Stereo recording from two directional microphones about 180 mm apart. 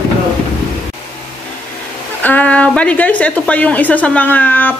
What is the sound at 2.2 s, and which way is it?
A woman's voice, 10° left (ahead or behind).